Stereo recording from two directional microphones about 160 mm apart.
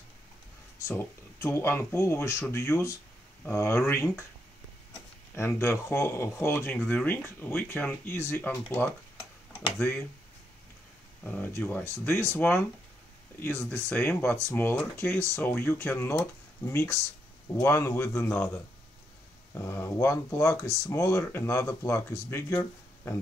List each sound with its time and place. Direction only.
0.8 s speech: 15° left (ahead or behind)
5.3 s speech: 15° left (ahead or behind)
11.2 s speech: 10° left (ahead or behind)